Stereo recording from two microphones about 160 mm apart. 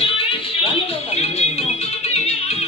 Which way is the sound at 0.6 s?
40° left (ahead or behind).